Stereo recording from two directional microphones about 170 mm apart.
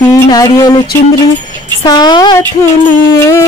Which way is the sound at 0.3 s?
20° left (ahead or behind).